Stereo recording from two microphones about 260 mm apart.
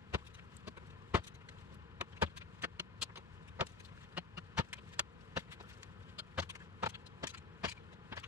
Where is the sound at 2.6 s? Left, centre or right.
Centre.